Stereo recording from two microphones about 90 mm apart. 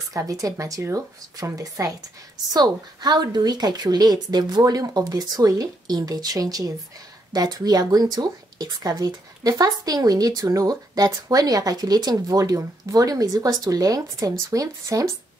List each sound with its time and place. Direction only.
0.1 s a woman's voice: 40° right (ahead or behind)